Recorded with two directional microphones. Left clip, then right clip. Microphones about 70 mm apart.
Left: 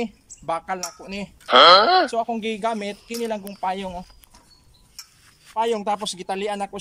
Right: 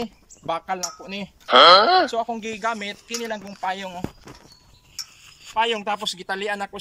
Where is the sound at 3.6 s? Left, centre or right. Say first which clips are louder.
Even; left.